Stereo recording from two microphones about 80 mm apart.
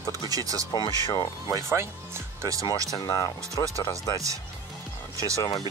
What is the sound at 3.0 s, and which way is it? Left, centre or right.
Speech, left.